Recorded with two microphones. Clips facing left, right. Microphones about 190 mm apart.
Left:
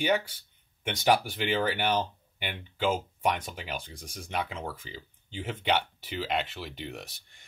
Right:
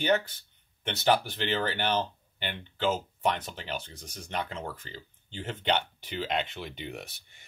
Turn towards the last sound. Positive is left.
turn(degrees=0)  # may be behind; listen again after turning